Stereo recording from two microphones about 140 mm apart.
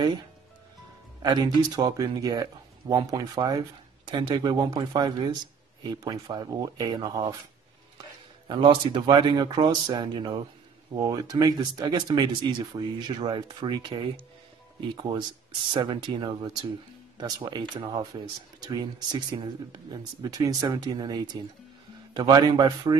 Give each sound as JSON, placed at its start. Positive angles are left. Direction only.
{"t": 1.2, "sound": "speech", "side_deg": -30}
{"t": 8.5, "sound": "speech", "side_deg": -35}